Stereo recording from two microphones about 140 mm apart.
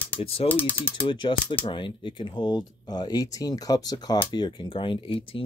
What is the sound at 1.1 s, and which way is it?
Speech, 35° left (ahead or behind).